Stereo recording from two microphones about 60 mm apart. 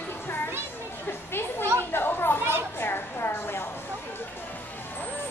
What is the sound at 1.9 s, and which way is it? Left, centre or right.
Chatter, left.